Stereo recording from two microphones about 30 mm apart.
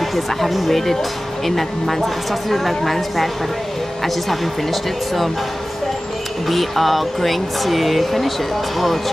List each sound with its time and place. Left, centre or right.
0.1 s speech: centre
6.5 s speech: centre